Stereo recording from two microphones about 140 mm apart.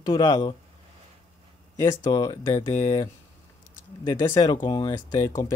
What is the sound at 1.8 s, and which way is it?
Speech, 25° left (ahead or behind).